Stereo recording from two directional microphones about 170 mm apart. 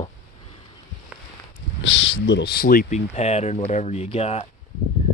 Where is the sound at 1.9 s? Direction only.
90° left; by 3.0 s 55° left (ahead or behind).